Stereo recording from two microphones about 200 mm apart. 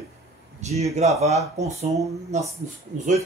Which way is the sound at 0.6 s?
35° right (ahead or behind).